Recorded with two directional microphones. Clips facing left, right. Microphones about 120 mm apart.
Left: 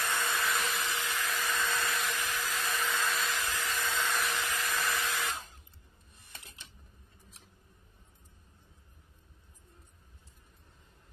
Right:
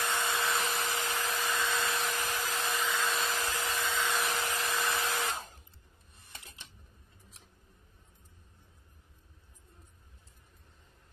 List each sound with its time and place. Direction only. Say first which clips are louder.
0.0 s hair dryer: right 1 dB; 15° right (ahead or behind)
0.7 s vacuum cleaner: right 1 dB; 40° right (ahead or behind)
1.3 s hair dryer: even; 15° right (ahead or behind)
2.1 s hair dryer: right 1 dB; 40° right (ahead or behind)
2.7 s hair dryer: even; 10° right (ahead or behind)
3.2 s vacuum cleaner: right 1 dB; 40° right (ahead or behind)
3.7 s a sound: even; 5° right (ahead or behind)
4.2 s hair dryer: right 1 dB; 40° right (ahead or behind)
4.8 s a sound: right 1 dB; 35° right (ahead or behind)